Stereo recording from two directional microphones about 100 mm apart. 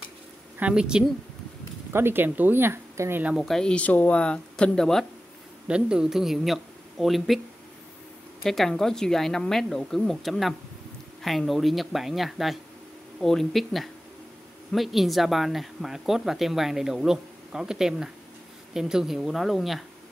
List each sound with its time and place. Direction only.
0.6 s speech: 10° right (ahead or behind)
1.9 s speech: 25° right (ahead or behind)
3.3 s speech: centre (ahead or behind)
5.7 s speech: 10° right (ahead or behind)
8.5 s speech: 5° left (ahead or behind)